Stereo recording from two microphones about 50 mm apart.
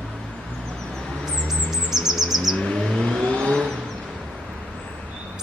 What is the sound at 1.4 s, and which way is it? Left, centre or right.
Bird, centre.